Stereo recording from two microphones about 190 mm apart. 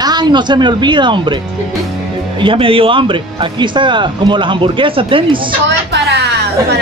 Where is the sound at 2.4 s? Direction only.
25° right (ahead or behind).